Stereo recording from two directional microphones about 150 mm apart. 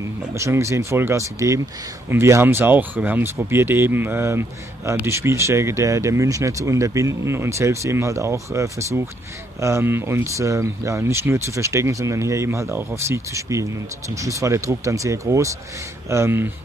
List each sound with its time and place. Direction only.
0.3 s speech: 20° right (ahead or behind)